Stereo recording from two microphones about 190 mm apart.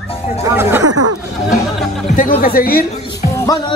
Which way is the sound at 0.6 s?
10° right (ahead or behind).